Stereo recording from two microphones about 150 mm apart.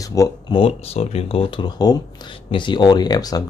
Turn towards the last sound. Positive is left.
turn(degrees=25)  # may be behind; listen again after turning